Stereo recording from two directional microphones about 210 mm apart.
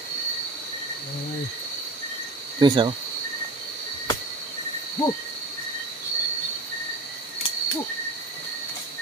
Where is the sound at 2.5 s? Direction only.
20° right (ahead or behind).